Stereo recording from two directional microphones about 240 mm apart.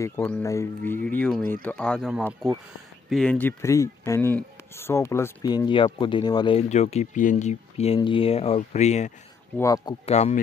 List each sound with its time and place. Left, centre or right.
0.0 s speech: centre; by 9.1 s left
9.6 s speech: centre
10.0 s speech: left